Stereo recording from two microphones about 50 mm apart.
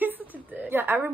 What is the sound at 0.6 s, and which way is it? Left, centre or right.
Speech, right.